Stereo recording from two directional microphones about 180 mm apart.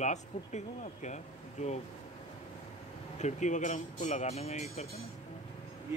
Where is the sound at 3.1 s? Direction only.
40° left (ahead or behind).